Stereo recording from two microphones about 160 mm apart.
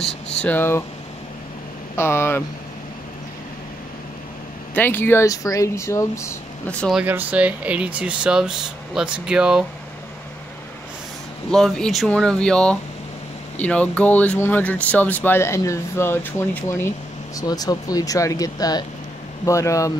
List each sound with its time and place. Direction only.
0.4 s speech: 10° left (ahead or behind)
2.0 s speech: 15° left (ahead or behind)
4.7 s speech: 15° left (ahead or behind)
6.7 s speech: 5° left (ahead or behind)
7.0 s speech: 10° right (ahead or behind)
11.5 s speech: centre (ahead or behind); by 19.9 s 20° left (ahead or behind)